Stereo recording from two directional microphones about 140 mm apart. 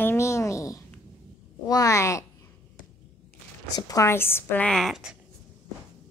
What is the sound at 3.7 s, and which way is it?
Speech, 25° left (ahead or behind).